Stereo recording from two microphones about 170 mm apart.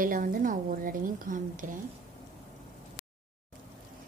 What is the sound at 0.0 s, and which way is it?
A woman's voice, 55° right (ahead or behind).